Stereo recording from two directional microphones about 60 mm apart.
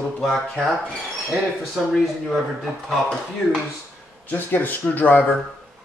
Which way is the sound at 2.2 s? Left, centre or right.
Centre.